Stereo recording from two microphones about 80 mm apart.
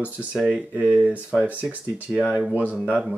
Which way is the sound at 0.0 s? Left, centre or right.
Centre.